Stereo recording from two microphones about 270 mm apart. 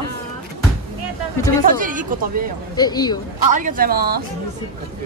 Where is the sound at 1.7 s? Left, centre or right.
Right.